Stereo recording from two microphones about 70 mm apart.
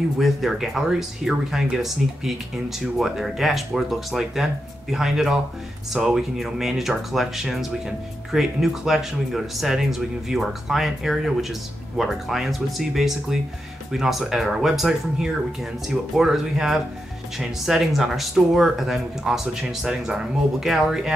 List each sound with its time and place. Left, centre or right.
0.2 s speech: centre